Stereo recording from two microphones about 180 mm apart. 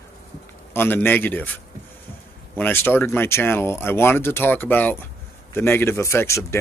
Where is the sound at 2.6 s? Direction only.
10° left (ahead or behind).